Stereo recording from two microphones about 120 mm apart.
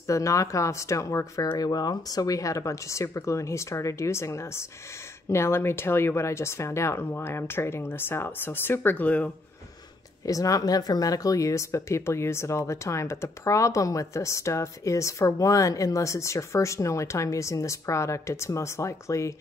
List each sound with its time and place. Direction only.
0.0 s speech: 25° left (ahead or behind)
10.2 s speech: 30° left (ahead or behind)